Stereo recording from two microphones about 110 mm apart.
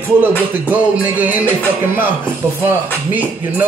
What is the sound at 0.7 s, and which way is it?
Music, 15° right (ahead or behind).